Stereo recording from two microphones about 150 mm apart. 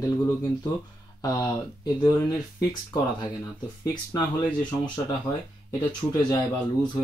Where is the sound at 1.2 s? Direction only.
25° left (ahead or behind).